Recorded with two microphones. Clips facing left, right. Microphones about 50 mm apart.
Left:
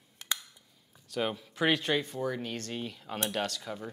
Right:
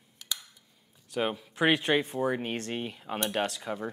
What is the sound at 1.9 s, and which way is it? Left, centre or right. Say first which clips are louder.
Speech: right 4 dB; right.